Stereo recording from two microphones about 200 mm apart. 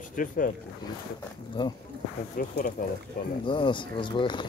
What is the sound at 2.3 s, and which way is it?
Speech, 45° left (ahead or behind).